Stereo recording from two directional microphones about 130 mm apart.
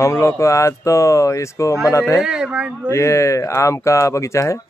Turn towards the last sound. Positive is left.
turn(degrees=25)  # may be behind; listen again after turning